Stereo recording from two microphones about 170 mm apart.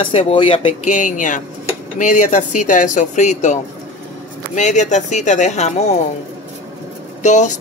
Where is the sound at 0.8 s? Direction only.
50° left (ahead or behind).